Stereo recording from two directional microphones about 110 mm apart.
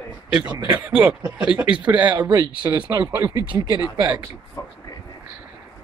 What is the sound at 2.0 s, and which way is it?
Speech, 40° right (ahead or behind).